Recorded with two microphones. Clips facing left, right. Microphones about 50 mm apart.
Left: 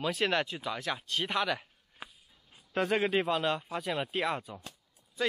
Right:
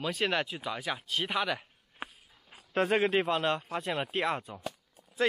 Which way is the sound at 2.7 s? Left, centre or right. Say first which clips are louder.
Right 2 dB; centre.